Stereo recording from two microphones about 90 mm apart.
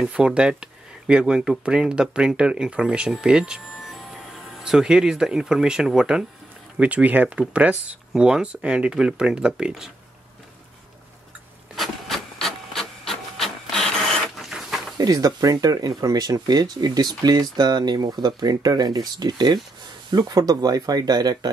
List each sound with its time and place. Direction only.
0.0 s speech: 10° right (ahead or behind)
11.7 s printer: centre (ahead or behind)
15.0 s speech: 45° right (ahead or behind)